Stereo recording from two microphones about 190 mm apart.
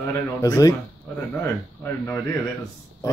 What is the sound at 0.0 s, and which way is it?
Speech, 20° left (ahead or behind).